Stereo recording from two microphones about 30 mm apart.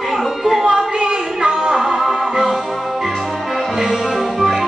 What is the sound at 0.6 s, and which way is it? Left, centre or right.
Music, right.